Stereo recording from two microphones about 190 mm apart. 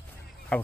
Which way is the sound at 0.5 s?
5° left (ahead or behind).